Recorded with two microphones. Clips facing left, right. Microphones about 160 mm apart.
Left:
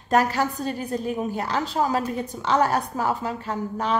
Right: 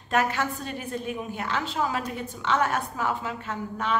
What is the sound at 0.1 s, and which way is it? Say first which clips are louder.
A woman's voice: left 4 dB; 35° left (ahead or behind).